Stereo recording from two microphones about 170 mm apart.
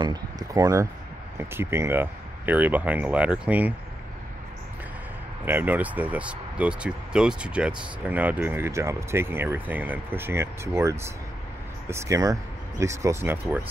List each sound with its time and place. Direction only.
0.0 s a sound: 20° right (ahead or behind)
1.4 s speech: 15° right (ahead or behind)
5.4 s speech: 10° right (ahead or behind)